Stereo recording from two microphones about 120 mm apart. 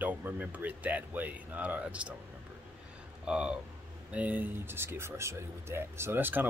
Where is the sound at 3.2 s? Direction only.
5° right (ahead or behind).